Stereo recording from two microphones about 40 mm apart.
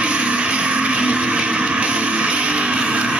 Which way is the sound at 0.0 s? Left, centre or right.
Right.